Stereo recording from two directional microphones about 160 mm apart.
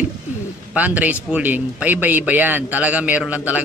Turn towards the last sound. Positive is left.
turn(degrees=-10)  # may be behind; listen again after turning